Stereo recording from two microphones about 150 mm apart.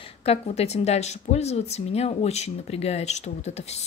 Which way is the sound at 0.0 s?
40° left (ahead or behind).